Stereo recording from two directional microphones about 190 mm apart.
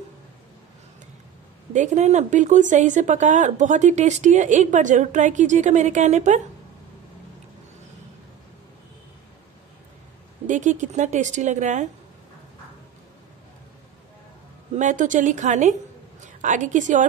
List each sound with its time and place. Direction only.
1.7 s speech: 40° right (ahead or behind)
10.4 s speech: 40° right (ahead or behind)
14.8 s speech: 40° right (ahead or behind)